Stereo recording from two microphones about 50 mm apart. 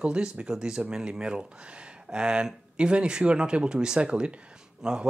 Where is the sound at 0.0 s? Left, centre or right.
Right.